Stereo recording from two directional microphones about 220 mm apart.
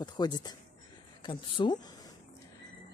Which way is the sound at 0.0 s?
20° left (ahead or behind).